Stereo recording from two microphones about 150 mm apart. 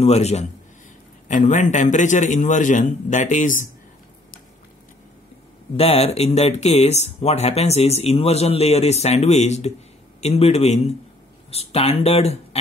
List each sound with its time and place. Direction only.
0.0 s speech: 45° left (ahead or behind)
1.3 s a man's voice: 55° left (ahead or behind)
5.8 s speech: 40° left (ahead or behind)